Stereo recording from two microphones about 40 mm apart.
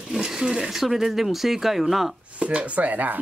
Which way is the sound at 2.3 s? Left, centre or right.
Right.